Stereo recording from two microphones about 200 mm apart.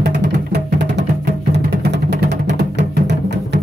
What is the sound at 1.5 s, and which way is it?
Music, 60° right (ahead or behind).